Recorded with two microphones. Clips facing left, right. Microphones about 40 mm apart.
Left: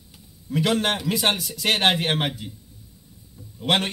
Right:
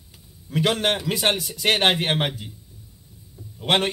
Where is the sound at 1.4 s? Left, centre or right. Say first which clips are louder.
Right 1 dB; centre.